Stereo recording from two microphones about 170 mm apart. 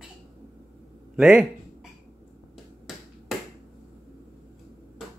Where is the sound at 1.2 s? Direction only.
Centre (ahead or behind).